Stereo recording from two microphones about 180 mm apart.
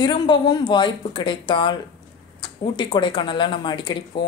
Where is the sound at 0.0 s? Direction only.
25° left (ahead or behind).